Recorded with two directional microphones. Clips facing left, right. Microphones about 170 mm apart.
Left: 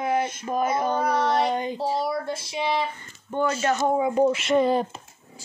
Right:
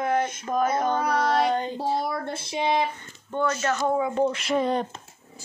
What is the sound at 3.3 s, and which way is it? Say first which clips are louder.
Speech: left 2 dB; 15° left (ahead or behind).